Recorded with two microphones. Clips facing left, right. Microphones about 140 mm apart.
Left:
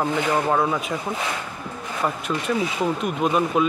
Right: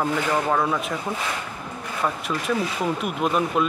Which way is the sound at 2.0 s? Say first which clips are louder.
Left 1 dB; centre (ahead or behind).